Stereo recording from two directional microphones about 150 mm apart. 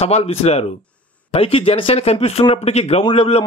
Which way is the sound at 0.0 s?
45° left (ahead or behind).